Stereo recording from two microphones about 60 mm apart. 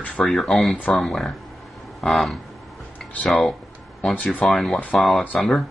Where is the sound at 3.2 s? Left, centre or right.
Centre.